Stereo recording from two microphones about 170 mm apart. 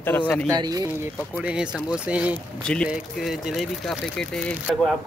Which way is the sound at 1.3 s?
5° right (ahead or behind).